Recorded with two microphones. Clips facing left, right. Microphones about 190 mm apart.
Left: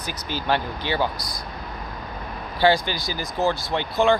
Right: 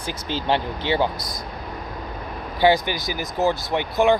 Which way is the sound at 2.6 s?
20° right (ahead or behind).